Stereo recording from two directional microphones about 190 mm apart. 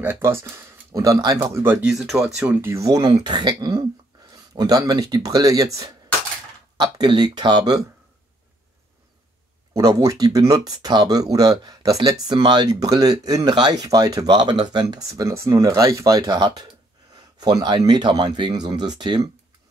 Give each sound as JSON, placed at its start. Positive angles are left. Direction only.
{"t": 0.0, "sound": "speech", "side_deg": -10}
{"t": 6.8, "sound": "speech", "side_deg": -20}
{"t": 9.8, "sound": "speech", "side_deg": -20}